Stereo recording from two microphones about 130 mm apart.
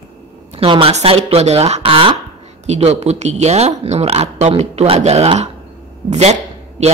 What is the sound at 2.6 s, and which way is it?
Speech, 60° right (ahead or behind).